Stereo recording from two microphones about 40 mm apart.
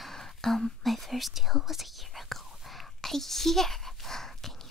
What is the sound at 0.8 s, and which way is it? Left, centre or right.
Whispering, centre.